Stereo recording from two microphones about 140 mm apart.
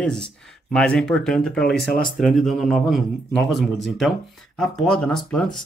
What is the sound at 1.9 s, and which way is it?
Speech, 90° left.